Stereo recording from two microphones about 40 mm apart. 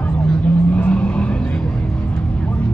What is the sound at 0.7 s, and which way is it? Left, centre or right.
Vehicle, left.